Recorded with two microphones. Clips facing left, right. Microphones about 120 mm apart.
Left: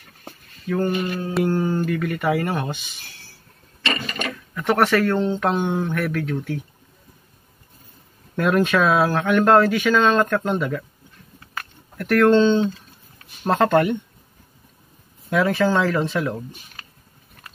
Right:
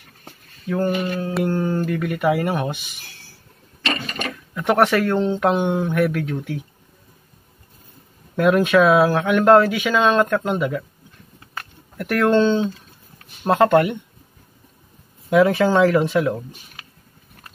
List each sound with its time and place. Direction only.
0.7 s speech: 10° right (ahead or behind)
1.2 s humming: centre (ahead or behind)
1.9 s speech: 5° right (ahead or behind)
4.6 s speech: 15° right (ahead or behind)
8.4 s speech: 5° right (ahead or behind)
11.5 s a sound: 10° right (ahead or behind)
13.4 s humming: 5° right (ahead or behind)
15.2 s speech: 20° right (ahead or behind)